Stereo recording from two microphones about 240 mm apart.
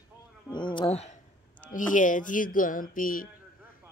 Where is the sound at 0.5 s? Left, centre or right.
Centre.